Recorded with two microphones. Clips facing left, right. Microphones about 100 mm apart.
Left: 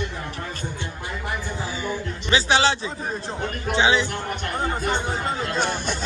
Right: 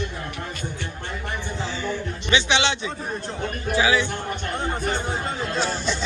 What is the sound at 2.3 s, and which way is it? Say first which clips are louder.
Speech: left 2 dB; 35° left (ahead or behind).